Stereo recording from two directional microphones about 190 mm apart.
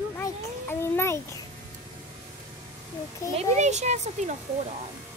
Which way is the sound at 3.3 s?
35° right (ahead or behind).